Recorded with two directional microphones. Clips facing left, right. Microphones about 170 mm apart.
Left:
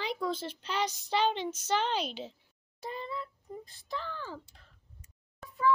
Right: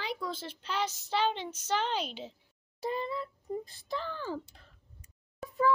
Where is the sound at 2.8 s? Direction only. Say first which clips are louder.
Right 5 dB; 35° right (ahead or behind).